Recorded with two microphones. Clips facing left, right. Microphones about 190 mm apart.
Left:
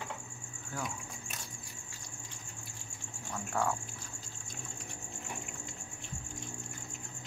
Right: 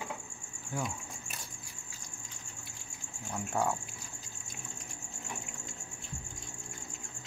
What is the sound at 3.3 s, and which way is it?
Speech, 20° right (ahead or behind).